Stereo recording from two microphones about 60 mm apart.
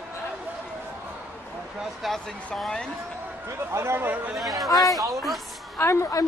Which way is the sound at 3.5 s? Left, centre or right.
Right.